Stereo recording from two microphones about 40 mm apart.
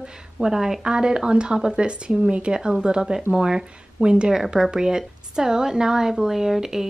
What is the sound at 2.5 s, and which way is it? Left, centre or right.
Speech, centre.